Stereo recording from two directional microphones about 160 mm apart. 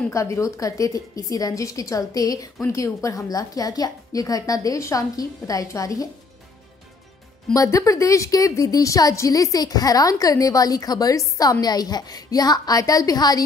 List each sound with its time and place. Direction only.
0.1 s a woman's voice: 20° left (ahead or behind)
7.5 s a woman's voice: 20° left (ahead or behind)